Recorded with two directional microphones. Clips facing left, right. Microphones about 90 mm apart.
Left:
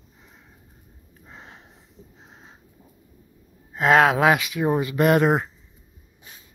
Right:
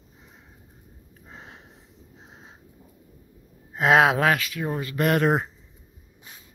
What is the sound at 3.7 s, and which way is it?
Speech, centre (ahead or behind).